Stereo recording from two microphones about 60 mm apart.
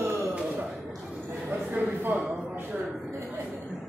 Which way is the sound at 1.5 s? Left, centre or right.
Right.